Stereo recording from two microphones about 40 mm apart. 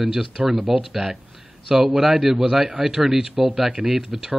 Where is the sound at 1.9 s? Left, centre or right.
Centre.